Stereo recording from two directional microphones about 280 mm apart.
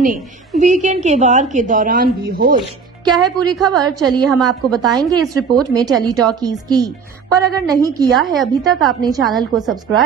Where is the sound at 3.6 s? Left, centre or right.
Centre.